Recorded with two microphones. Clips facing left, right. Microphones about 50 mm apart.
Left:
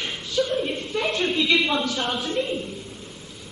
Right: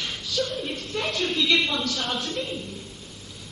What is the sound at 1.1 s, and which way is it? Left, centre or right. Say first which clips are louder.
A woman's voice: left 2 dB; centre.